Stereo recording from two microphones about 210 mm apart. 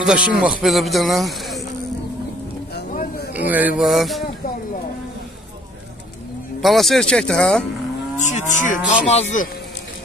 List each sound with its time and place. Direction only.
0.0 s a man's voice: 5° right (ahead or behind)
2.9 s a sound: 40° left (ahead or behind)
3.3 s speech: 10° right (ahead or behind)
6.6 s a man's voice: centre (ahead or behind)
8.2 s cattle: 35° left (ahead or behind)